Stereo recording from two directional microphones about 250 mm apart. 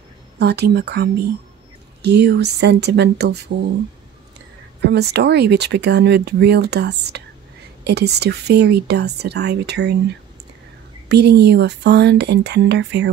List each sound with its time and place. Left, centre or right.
0.4 s speech: right
4.8 s speech: right
11.1 s speech: right